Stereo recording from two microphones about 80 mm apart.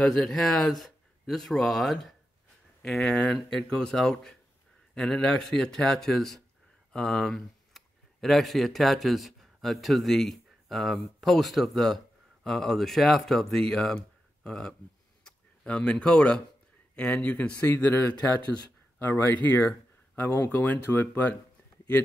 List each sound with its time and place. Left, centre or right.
0.0 s speech: centre
15.2 s a sound: centre
16.9 s a man's voice: centre